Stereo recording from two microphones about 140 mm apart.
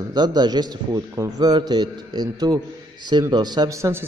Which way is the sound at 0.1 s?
30° right (ahead or behind).